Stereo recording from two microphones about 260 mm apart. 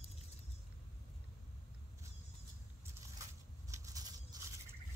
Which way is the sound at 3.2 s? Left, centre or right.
Centre.